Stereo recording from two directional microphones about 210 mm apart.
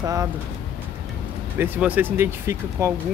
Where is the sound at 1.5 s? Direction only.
10° right (ahead or behind).